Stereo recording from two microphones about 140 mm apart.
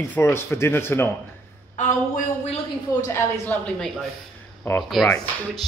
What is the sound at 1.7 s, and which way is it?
Speech, 65° left (ahead or behind).